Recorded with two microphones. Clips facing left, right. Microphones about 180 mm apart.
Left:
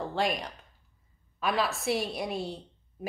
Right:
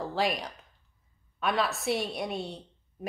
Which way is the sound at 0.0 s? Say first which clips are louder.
Even; centre (ahead or behind).